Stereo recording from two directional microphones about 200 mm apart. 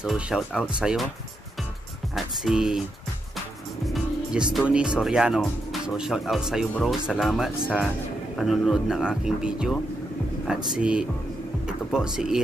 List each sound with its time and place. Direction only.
0.0 s speech: 5° right (ahead or behind)
2.1 s speech: centre (ahead or behind)
3.8 s music: centre (ahead or behind)
4.6 s speech: 5° right (ahead or behind)